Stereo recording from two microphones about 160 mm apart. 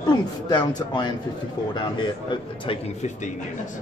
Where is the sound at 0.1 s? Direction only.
25° left (ahead or behind).